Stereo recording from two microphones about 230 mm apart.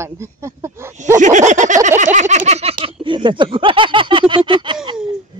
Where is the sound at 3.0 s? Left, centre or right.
Right.